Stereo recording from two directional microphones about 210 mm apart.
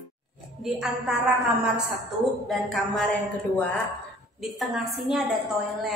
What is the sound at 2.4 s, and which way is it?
Speech, centre (ahead or behind).